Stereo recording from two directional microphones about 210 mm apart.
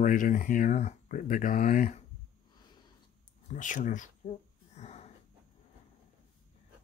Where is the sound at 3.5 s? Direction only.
35° left (ahead or behind).